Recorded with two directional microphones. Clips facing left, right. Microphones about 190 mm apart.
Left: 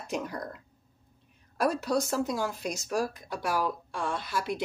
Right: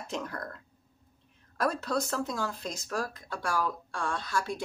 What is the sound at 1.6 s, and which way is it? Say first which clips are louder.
Speech: left 3 dB; 15° left (ahead or behind).